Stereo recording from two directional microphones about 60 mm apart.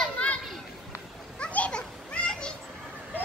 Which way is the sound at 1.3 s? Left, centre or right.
Centre.